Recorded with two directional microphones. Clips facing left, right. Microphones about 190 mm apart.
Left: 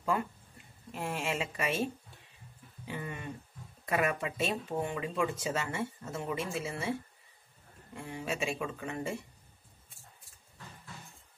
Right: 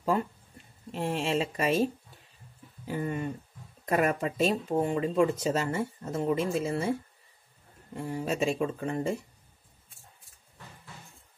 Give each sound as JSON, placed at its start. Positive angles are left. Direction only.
{"t": 0.9, "sound": "speech", "side_deg": -30}